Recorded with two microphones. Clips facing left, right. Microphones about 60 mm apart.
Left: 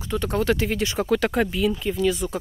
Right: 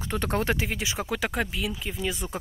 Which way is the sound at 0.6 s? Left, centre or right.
Centre.